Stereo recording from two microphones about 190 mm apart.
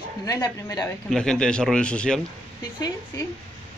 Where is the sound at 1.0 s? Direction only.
5° left (ahead or behind).